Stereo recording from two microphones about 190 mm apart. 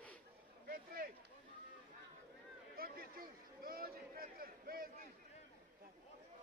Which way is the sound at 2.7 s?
50° right (ahead or behind).